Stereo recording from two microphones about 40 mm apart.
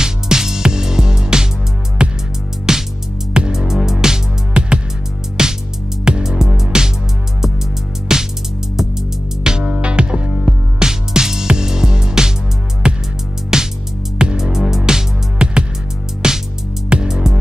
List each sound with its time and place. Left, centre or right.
0.0 s music: centre
2.7 s music: centre
8.1 s music: centre
9.4 s music: centre